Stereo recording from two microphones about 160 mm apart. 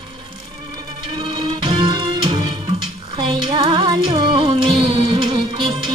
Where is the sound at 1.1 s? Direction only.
30° right (ahead or behind).